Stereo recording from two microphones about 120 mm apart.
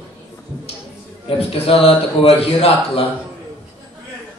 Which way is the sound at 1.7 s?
50° left (ahead or behind).